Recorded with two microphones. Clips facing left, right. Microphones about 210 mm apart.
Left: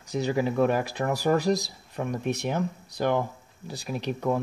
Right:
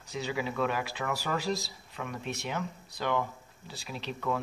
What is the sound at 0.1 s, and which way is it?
Speech, 45° left (ahead or behind).